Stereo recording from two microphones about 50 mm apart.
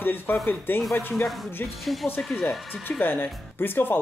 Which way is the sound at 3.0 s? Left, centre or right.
Left.